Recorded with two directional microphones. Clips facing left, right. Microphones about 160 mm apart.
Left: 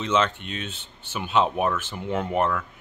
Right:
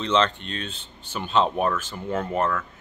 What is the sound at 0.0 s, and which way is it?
Speech, 10° left (ahead or behind).